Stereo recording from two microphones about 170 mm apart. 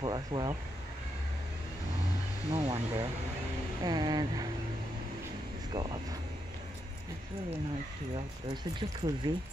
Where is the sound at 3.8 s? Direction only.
25° right (ahead or behind).